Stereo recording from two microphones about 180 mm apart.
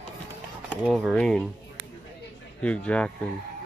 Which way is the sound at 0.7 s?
5° right (ahead or behind).